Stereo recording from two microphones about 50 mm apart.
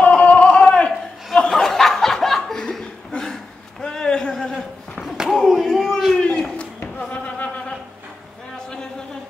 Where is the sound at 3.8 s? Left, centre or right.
Centre.